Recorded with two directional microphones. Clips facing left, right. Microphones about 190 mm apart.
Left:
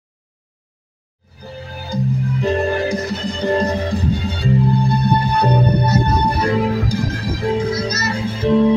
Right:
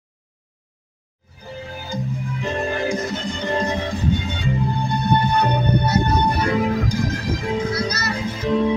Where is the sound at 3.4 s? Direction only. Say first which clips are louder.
Left 5 dB; 35° left (ahead or behind).